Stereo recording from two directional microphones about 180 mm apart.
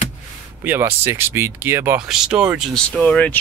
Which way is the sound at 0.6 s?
10° right (ahead or behind).